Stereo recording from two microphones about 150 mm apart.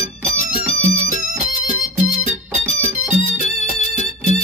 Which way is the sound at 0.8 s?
60° right (ahead or behind).